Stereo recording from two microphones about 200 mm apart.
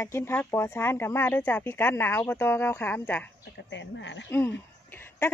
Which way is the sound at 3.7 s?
65° left (ahead or behind).